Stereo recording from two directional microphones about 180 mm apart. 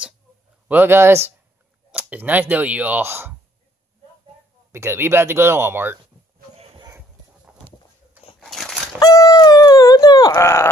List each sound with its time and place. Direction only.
0.7 s speech: 10° right (ahead or behind)
4.7 s speech: 15° right (ahead or behind)
8.4 s dog: centre (ahead or behind)
9.0 s dog: 20° left (ahead or behind)